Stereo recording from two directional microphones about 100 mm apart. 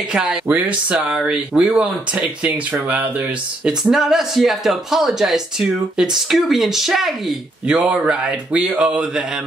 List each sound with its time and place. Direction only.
0.1 s speech: 5° right (ahead or behind)
3.8 s speech: 5° right (ahead or behind)